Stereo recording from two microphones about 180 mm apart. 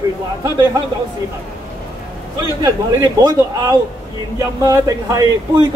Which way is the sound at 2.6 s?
20° right (ahead or behind).